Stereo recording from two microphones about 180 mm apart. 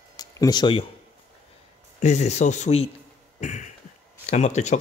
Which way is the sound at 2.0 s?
40° left (ahead or behind).